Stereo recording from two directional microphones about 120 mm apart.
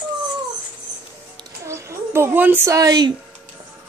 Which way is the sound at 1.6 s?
25° right (ahead or behind).